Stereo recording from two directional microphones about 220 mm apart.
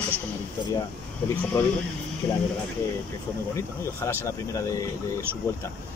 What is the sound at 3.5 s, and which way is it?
Speech, 10° left (ahead or behind).